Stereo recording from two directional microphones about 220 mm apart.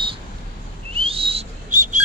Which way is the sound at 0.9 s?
25° right (ahead or behind).